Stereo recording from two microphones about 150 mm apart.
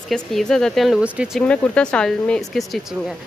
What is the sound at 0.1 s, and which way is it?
Speech, 5° left (ahead or behind).